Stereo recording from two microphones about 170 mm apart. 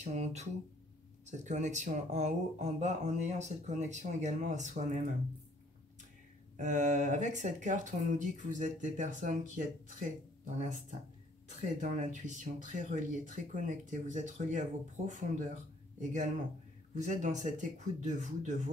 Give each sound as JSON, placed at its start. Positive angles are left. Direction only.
{"t": 0.0, "sound": "speech", "side_deg": -40}
{"t": 6.5, "sound": "speech", "side_deg": -45}